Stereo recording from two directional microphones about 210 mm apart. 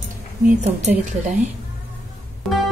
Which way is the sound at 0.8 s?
35° right (ahead or behind).